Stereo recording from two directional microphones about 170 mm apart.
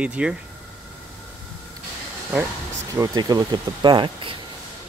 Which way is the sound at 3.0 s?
20° right (ahead or behind).